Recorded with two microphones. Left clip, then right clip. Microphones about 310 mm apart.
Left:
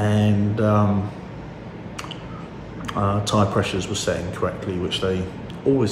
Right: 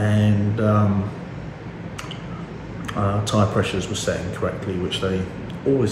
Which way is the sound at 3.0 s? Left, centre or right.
Centre.